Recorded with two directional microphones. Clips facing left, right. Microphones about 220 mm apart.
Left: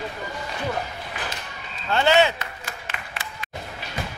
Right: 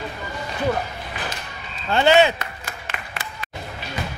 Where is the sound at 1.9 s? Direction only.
15° right (ahead or behind).